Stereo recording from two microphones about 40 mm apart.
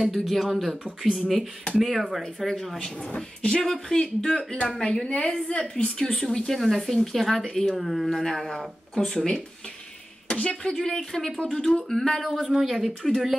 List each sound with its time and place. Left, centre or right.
0.0 s a woman's voice: centre
1.8 s speech: centre
3.2 s a woman's voice: left
5.9 s speech: centre
10.2 s speech: left
11.1 s speech: centre
12.4 s a woman's voice: centre